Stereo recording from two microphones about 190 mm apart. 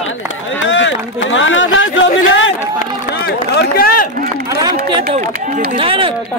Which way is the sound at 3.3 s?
55° left (ahead or behind).